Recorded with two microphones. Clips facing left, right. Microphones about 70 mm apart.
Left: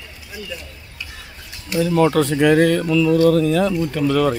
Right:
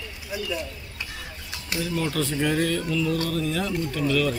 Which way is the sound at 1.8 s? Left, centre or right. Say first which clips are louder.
Left 12 dB; left.